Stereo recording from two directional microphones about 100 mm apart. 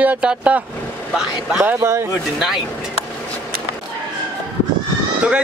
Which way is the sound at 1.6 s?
25° right (ahead or behind).